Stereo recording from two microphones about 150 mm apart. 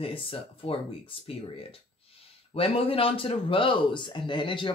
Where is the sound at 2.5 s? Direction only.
40° left (ahead or behind).